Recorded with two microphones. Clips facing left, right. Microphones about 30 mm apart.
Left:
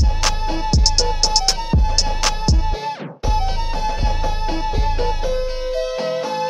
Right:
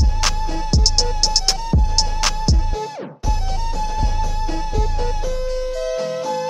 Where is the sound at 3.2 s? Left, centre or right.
Left.